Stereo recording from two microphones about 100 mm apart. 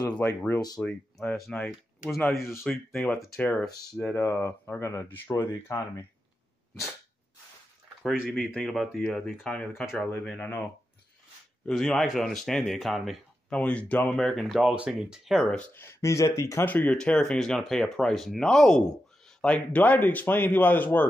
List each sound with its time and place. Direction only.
0.1 s speech: 15° left (ahead or behind)
5.7 s speech: 35° left (ahead or behind)
8.0 s speech: 5° right (ahead or behind)
13.5 s speech: 10° left (ahead or behind)
15.7 s speech: 25° left (ahead or behind)
16.6 s speech: 15° left (ahead or behind)